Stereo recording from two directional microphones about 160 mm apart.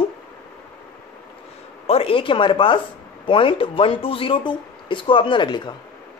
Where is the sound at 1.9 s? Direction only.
35° left (ahead or behind).